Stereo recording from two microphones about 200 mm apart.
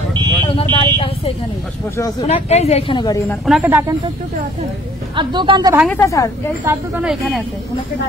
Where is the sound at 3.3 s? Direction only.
Centre (ahead or behind).